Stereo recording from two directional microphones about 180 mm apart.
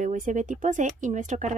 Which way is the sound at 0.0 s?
45° right (ahead or behind).